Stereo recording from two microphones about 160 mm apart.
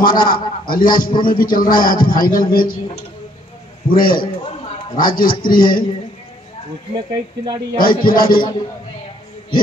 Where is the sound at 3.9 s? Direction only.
65° left (ahead or behind).